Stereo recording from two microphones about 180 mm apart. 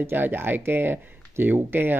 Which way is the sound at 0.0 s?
10° right (ahead or behind).